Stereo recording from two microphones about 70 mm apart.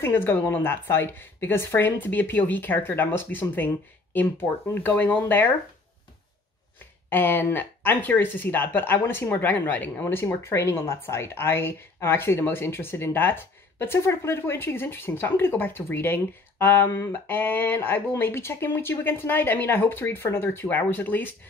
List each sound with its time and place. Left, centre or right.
0.0 s a woman's voice: left
7.1 s a woman's voice: left
10.4 s a woman's voice: left